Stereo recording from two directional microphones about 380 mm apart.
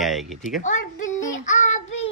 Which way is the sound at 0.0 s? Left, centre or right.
Centre.